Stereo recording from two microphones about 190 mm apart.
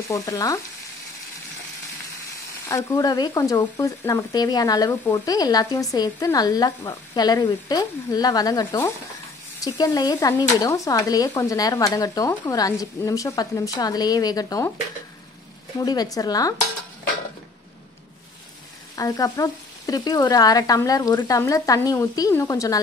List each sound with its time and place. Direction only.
0.1 s frying: 15° left (ahead or behind)
2.7 s speech: 15° left (ahead or behind)
15.8 s speech: 20° left (ahead or behind)
18.9 s frying: 20° left (ahead or behind)